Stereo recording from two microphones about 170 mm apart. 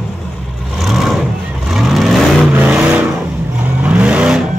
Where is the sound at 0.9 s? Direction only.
Centre (ahead or behind).